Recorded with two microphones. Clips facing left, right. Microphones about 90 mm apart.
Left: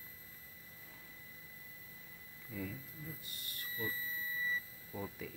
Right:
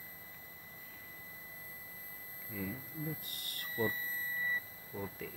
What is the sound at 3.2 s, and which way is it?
Smoke detector, 60° right (ahead or behind).